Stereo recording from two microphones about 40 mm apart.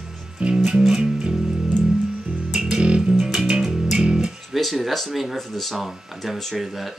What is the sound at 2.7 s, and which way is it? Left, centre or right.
Music, right.